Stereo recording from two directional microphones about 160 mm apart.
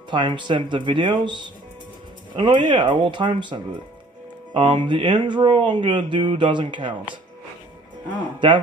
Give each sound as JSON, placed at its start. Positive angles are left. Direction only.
{"t": 0.1, "sound": "speech", "side_deg": -30}